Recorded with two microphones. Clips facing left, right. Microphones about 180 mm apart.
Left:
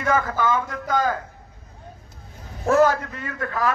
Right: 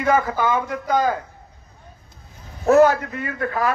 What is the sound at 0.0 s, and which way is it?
A man's voice, 15° right (ahead or behind).